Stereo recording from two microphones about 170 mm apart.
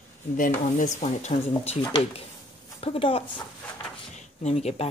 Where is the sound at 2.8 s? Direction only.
35° left (ahead or behind).